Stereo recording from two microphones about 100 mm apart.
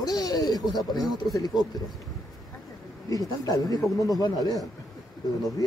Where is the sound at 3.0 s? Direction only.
40° left (ahead or behind).